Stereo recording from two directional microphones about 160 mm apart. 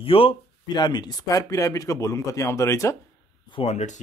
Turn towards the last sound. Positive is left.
turn(degrees=45)  # may be behind; listen again after turning